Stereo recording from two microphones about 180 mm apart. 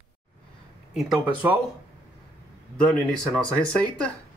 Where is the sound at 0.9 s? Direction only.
Centre (ahead or behind).